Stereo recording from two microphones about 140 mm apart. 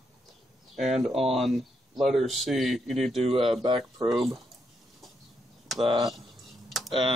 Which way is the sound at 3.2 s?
40° right (ahead or behind).